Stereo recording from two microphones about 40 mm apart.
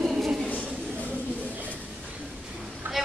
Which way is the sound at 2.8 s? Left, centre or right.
Right.